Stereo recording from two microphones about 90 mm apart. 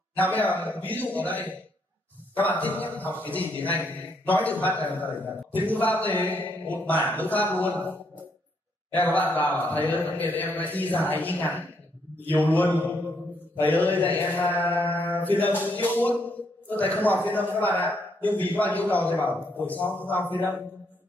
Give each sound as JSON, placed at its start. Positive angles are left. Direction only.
{"t": 0.1, "sound": "a man's voice", "side_deg": 20}
{"t": 6.1, "sound": "speech", "side_deg": -20}
{"t": 6.4, "sound": "a man's voice", "side_deg": 20}
{"t": 8.9, "sound": "a man's voice", "side_deg": 20}
{"t": 14.6, "sound": "mantra", "side_deg": 20}
{"t": 15.8, "sound": "a man's voice", "side_deg": 20}